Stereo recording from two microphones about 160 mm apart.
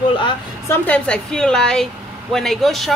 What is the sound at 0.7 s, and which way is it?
A woman's voice, 10° left (ahead or behind).